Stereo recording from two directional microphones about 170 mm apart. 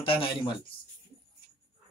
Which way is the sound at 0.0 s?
30° left (ahead or behind).